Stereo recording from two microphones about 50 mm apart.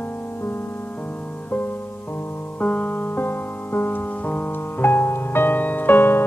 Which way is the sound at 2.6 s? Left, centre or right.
Left.